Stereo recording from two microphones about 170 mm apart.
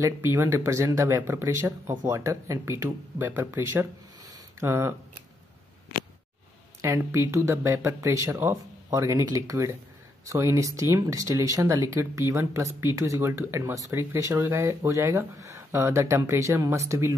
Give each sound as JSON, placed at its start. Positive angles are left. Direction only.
{"t": 0.0, "sound": "speech", "side_deg": -15}
{"t": 6.8, "sound": "speech", "side_deg": -15}